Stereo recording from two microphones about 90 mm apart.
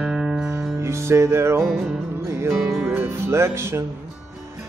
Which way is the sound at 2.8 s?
20° right (ahead or behind).